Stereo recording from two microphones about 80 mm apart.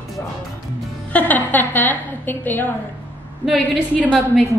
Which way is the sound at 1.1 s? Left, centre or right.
Left.